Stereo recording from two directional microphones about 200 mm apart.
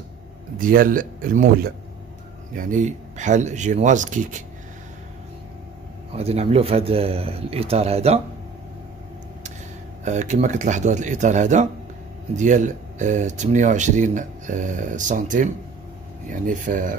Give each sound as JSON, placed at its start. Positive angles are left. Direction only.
{"t": 0.6, "sound": "speech", "side_deg": -45}
{"t": 6.1, "sound": "speech", "side_deg": -30}
{"t": 10.0, "sound": "speech", "side_deg": -35}